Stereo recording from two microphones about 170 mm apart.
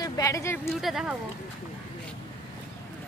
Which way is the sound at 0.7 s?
Centre (ahead or behind).